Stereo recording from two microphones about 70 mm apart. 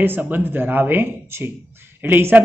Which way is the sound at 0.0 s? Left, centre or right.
Right.